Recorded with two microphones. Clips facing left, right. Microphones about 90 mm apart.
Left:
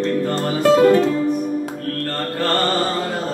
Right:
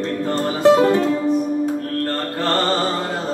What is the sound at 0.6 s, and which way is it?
Music, 20° right (ahead or behind).